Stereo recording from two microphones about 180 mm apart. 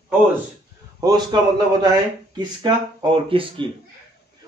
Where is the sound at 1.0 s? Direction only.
25° right (ahead or behind).